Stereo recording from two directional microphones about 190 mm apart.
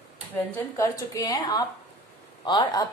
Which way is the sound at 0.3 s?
10° left (ahead or behind).